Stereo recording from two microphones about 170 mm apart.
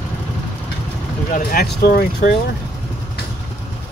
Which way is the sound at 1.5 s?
70° left (ahead or behind).